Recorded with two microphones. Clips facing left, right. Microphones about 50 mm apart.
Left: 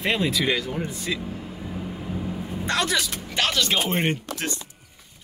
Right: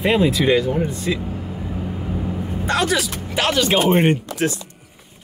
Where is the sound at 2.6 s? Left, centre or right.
Centre.